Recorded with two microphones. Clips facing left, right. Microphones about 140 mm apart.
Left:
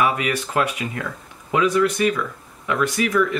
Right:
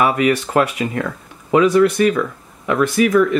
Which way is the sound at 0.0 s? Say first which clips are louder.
Right 5 dB; 45° right (ahead or behind).